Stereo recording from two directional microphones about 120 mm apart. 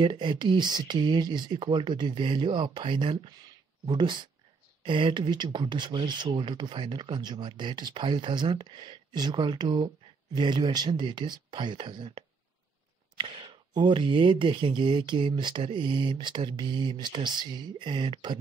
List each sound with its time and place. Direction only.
0.0 s speech: 40° right (ahead or behind)